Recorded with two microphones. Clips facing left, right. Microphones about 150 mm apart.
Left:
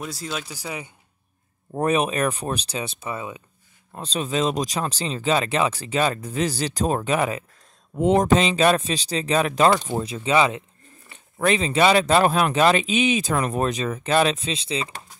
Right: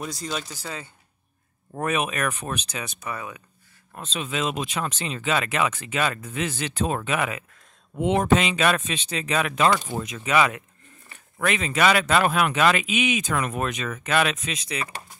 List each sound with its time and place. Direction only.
0.0 s speech: 5° left (ahead or behind)
1.7 s a man's voice: 30° left (ahead or behind)
3.9 s a man's voice: 35° left (ahead or behind)